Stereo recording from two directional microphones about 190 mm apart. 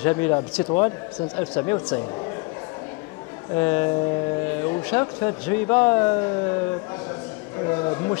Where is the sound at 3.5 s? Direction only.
15° left (ahead or behind).